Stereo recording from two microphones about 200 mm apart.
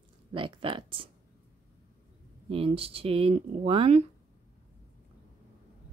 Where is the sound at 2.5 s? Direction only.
30° right (ahead or behind).